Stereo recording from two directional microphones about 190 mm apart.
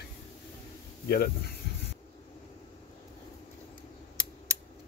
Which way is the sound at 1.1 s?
55° left (ahead or behind).